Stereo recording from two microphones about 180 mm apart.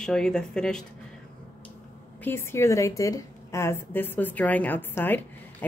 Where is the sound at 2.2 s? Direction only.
15° left (ahead or behind).